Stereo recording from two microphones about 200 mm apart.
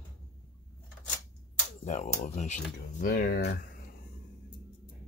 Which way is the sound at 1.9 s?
35° left (ahead or behind).